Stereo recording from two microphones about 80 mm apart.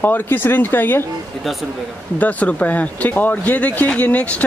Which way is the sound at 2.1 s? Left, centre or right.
Centre.